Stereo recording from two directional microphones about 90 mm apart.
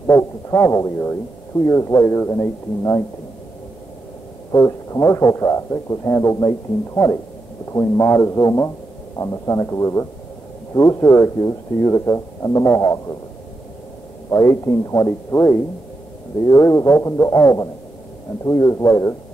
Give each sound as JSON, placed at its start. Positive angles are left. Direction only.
{"t": 0.0, "sound": "a man's voice", "side_deg": 30}
{"t": 4.5, "sound": "speech", "side_deg": 35}
{"t": 14.3, "sound": "speech", "side_deg": 35}